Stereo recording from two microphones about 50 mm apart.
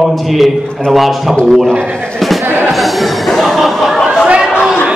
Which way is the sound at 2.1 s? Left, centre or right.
Centre.